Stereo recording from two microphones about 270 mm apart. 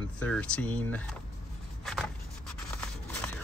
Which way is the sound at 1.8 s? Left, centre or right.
Centre.